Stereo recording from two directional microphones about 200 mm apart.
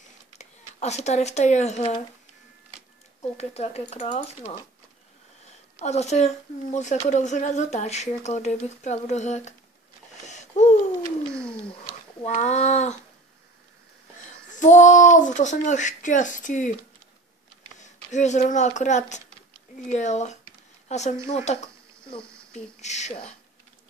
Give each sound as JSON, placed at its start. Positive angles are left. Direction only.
{"t": 0.4, "sound": "speech", "side_deg": 35}
{"t": 3.3, "sound": "speech", "side_deg": 30}
{"t": 5.8, "sound": "speech", "side_deg": 35}
{"t": 10.2, "sound": "a sound", "side_deg": 35}
{"t": 11.3, "sound": "a sound", "side_deg": 5}
{"t": 12.2, "sound": "speech", "side_deg": 30}
{"t": 14.5, "sound": "speech", "side_deg": 40}
{"t": 17.7, "sound": "speech", "side_deg": 35}
{"t": 22.2, "sound": "a sound", "side_deg": 5}
{"t": 22.5, "sound": "speech", "side_deg": 35}